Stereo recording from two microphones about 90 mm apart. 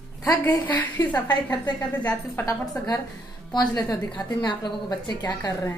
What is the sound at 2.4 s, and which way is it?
A woman's voice, 40° left (ahead or behind).